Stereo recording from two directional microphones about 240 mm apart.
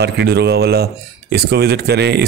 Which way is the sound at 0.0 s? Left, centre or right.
Right.